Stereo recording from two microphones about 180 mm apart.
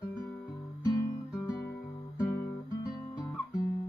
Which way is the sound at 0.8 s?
20° left (ahead or behind).